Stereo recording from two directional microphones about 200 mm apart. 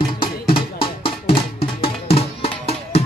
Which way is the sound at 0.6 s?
25° left (ahead or behind).